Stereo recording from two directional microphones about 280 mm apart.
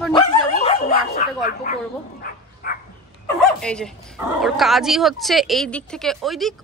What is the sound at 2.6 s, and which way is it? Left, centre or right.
Dog, left.